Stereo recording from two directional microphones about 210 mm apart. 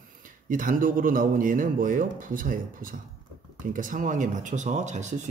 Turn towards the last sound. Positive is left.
turn(degrees=-35)  # may be behind; listen again after turning